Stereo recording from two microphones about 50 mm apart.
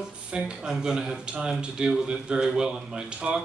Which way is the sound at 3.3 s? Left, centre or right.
Right.